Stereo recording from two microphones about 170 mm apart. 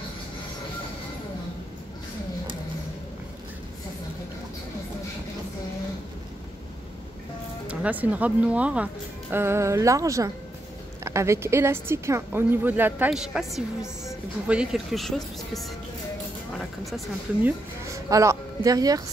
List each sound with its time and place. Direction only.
7.6 s speech: 10° right (ahead or behind)
18.1 s speech: 20° right (ahead or behind)